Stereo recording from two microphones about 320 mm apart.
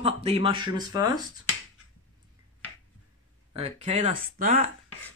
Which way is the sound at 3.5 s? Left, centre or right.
Centre.